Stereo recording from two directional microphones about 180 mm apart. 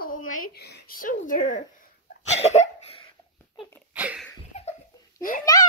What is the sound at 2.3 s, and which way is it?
Cough, 40° left (ahead or behind).